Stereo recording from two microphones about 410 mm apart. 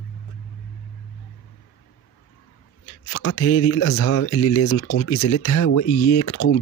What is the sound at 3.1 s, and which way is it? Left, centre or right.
Speech, left.